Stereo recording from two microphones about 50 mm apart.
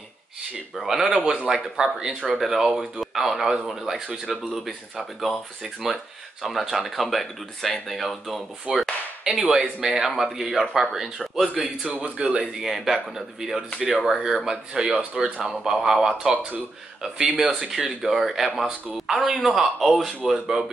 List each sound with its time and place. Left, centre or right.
0.4 s speech: centre
2.2 s speech: centre
8.7 s speech: centre
11.4 s speech: right
12.5 s speech: centre
17.5 s speech: centre